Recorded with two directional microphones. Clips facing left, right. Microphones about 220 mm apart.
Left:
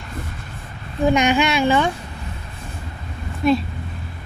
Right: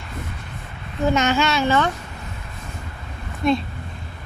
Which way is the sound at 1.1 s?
15° left (ahead or behind).